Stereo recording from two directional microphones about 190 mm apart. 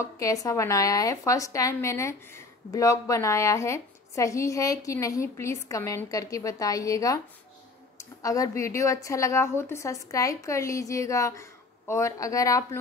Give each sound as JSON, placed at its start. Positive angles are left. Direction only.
{"t": 0.0, "sound": "a woman's voice", "side_deg": 15}